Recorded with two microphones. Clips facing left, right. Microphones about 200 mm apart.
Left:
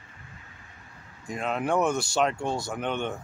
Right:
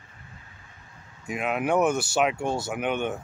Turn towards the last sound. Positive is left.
turn(degrees=-10)  # may be behind; listen again after turning